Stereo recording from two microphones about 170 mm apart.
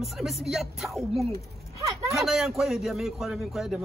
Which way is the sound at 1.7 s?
20° right (ahead or behind).